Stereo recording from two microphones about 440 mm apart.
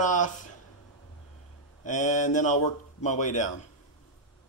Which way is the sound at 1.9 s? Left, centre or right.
Centre.